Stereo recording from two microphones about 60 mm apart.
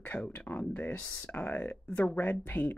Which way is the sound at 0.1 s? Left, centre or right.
Left.